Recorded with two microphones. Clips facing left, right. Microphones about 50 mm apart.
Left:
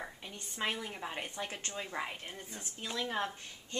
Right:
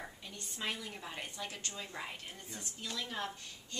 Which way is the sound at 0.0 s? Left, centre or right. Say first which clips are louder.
Left 3 dB; left.